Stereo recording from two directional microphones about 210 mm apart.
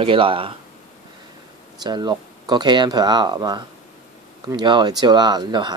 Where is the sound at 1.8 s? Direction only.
20° right (ahead or behind).